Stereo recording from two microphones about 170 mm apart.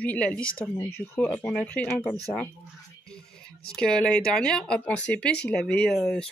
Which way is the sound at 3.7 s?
5° left (ahead or behind).